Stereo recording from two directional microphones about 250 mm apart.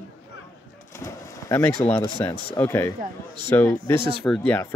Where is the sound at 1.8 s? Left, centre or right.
Centre.